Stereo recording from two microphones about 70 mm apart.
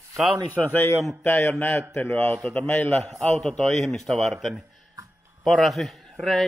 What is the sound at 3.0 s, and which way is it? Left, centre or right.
Speech, centre.